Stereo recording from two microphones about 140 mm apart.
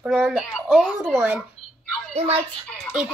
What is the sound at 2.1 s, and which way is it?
Speech, 50° right (ahead or behind).